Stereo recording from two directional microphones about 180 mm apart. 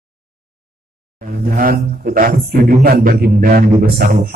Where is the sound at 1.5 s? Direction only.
50° right (ahead or behind).